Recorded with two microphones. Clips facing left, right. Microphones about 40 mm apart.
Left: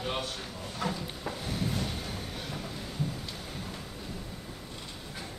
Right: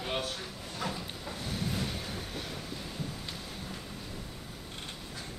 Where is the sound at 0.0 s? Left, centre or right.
Centre.